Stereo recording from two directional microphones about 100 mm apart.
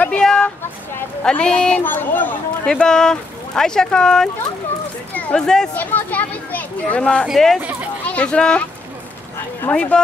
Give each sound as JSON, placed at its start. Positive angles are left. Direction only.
{"t": 0.0, "sound": "a sound", "side_deg": 10}
{"t": 1.2, "sound": "speech", "side_deg": 10}
{"t": 2.6, "sound": "speech", "side_deg": 10}
{"t": 5.8, "sound": "speech", "side_deg": 15}
{"t": 9.7, "sound": "speech", "side_deg": 15}